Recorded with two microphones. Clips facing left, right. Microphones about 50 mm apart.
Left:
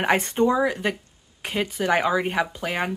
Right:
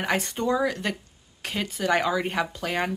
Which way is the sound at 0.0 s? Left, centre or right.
Left.